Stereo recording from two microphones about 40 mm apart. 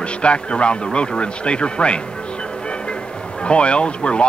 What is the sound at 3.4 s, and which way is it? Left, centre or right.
Speech, left.